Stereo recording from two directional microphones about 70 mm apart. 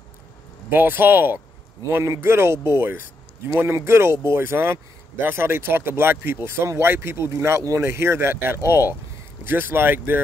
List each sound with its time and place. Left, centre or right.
0.7 s speech: right